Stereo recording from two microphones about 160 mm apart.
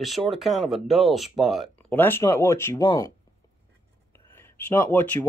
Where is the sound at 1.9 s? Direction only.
15° left (ahead or behind).